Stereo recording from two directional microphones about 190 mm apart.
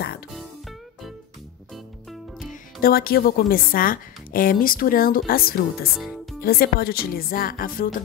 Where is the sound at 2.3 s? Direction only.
50° left (ahead or behind).